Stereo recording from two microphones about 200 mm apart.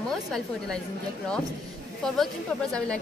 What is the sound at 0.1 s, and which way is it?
Speech, centre (ahead or behind).